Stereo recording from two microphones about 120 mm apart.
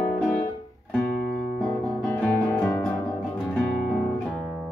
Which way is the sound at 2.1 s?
5° left (ahead or behind).